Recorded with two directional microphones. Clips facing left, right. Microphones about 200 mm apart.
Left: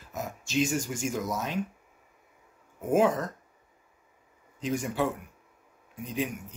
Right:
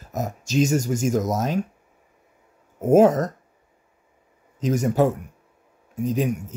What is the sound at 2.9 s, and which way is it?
Speech, 45° right (ahead or behind).